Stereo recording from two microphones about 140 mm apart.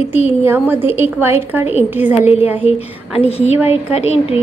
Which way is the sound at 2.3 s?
50° left (ahead or behind).